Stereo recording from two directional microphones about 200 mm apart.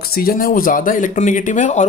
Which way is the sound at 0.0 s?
50° left (ahead or behind).